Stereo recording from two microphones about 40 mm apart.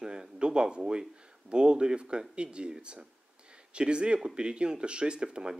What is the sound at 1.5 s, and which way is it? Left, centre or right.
Speech, right.